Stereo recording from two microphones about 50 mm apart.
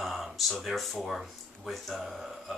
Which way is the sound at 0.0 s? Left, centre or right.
Centre.